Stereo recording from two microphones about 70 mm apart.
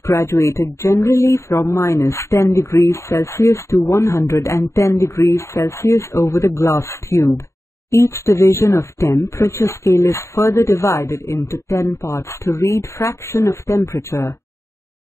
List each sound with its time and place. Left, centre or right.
0.0 s speech: left